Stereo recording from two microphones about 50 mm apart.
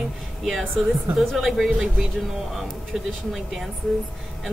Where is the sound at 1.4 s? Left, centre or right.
Centre.